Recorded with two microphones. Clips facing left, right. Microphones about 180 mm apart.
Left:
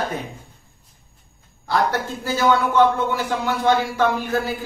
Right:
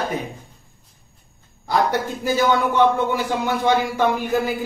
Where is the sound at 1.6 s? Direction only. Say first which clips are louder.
Right 1 dB; 15° right (ahead or behind).